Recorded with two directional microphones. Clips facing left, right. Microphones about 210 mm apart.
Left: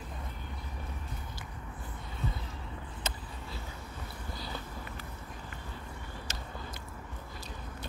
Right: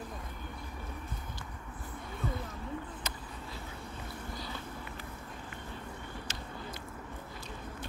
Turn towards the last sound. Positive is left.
turn(degrees=40)  # may be behind; listen again after turning